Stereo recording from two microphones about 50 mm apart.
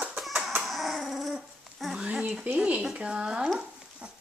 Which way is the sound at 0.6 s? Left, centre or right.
Centre.